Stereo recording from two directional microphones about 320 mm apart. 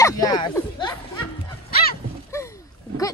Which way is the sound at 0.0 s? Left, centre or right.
Centre.